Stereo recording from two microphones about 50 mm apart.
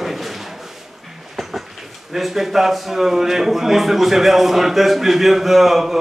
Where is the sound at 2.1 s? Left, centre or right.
Centre.